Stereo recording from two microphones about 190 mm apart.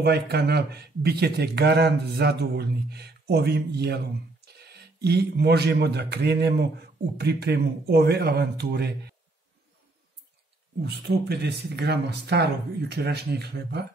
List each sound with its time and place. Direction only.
0.0 s a man's voice: 60° right (ahead or behind)
10.8 s a man's voice: 60° right (ahead or behind)